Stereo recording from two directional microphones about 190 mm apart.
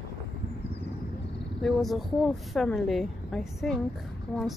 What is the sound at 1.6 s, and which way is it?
A woman's voice, centre (ahead or behind).